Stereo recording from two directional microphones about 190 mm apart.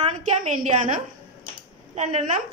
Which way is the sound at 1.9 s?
35° right (ahead or behind).